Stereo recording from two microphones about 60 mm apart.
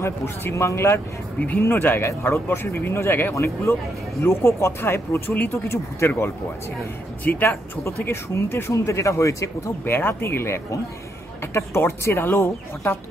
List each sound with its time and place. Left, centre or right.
0.0 s speech: left
1.6 s speech: left
5.7 s speech: left
7.2 s speech: left
8.0 s speech: left
8.7 s speech: left
9.8 s speech: left